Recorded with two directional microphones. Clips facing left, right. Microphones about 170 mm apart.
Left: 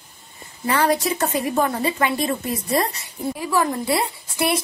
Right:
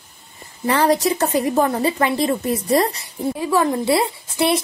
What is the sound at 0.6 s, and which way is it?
A woman's voice, 35° right (ahead or behind).